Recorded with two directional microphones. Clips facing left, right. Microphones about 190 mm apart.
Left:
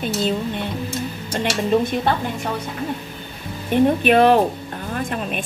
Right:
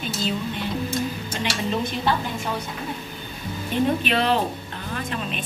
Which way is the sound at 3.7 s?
50° left (ahead or behind).